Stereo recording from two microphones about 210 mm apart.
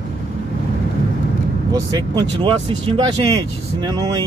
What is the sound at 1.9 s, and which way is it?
Speech, 20° right (ahead or behind).